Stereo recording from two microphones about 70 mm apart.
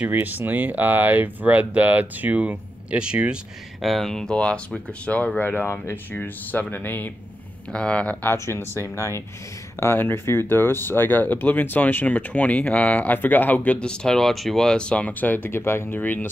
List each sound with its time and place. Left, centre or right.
0.0 s speech: right
3.0 s speech: centre
3.8 s speech: centre; by 7.1 s left
7.7 s speech: centre
8.2 s speech: left